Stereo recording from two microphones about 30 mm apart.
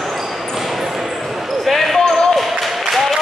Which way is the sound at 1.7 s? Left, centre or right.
Centre.